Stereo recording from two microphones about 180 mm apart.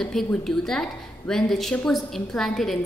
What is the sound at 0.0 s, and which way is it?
A woman's voice, 5° left (ahead or behind).